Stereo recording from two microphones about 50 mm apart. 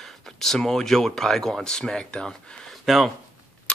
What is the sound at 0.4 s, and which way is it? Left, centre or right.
Speech, centre.